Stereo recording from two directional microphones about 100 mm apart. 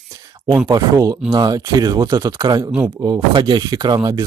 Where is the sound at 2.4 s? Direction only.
50° right (ahead or behind); by 4.2 s 35° right (ahead or behind).